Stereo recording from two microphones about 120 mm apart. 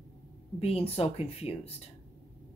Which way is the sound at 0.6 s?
55° left (ahead or behind).